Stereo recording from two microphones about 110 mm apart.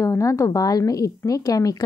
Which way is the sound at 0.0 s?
30° left (ahead or behind).